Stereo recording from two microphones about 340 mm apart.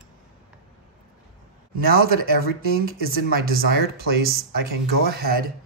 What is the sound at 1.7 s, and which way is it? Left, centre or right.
Speech, right.